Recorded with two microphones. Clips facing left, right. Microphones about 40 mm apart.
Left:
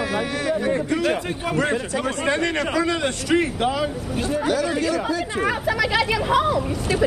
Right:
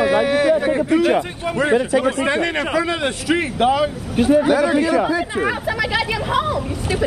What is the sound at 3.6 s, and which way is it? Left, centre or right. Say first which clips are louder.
Speech: right 6 dB; right.